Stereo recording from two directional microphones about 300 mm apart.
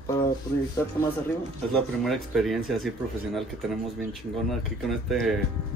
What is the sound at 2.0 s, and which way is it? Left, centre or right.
Speech, centre.